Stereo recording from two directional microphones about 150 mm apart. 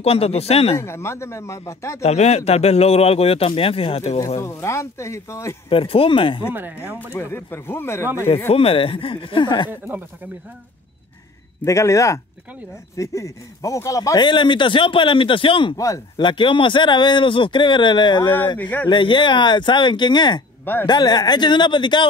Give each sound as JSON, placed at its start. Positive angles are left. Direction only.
{"t": 0.0, "sound": "speech", "side_deg": 40}
{"t": 0.7, "sound": "speech", "side_deg": 15}
{"t": 2.0, "sound": "speech", "side_deg": 45}
{"t": 4.4, "sound": "speech", "side_deg": 15}
{"t": 5.7, "sound": "speech", "side_deg": 40}
{"t": 6.5, "sound": "speech", "side_deg": -15}
{"t": 7.0, "sound": "speech", "side_deg": 15}
{"t": 8.5, "sound": "speech", "side_deg": 40}
{"t": 9.7, "sound": "speech", "side_deg": -15}
{"t": 11.6, "sound": "speech", "side_deg": 20}
{"t": 15.7, "sound": "speech", "side_deg": 20}
{"t": 18.2, "sound": "speech", "side_deg": 15}
{"t": 18.9, "sound": "speech", "side_deg": 35}